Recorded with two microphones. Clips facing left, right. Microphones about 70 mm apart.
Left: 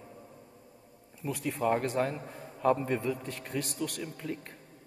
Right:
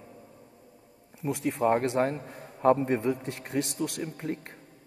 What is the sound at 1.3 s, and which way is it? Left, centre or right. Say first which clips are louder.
A man's voice: right 4 dB; right.